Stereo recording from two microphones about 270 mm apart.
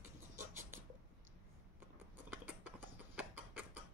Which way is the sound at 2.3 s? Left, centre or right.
Centre.